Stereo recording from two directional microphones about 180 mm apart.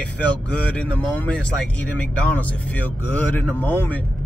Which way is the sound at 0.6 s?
5° left (ahead or behind).